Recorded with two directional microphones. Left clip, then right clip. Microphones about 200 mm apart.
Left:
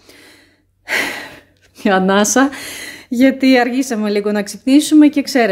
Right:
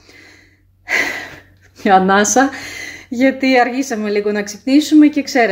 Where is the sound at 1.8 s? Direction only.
20° left (ahead or behind).